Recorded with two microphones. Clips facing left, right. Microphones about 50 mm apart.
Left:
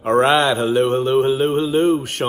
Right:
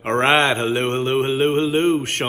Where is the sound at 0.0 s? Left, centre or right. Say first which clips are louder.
Left 2 dB; right.